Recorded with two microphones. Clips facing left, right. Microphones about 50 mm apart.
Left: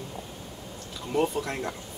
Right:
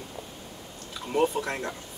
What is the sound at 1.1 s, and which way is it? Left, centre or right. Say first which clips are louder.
Speech: right 1 dB; centre.